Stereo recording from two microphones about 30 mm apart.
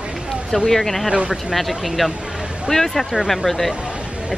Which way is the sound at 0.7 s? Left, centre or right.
Centre.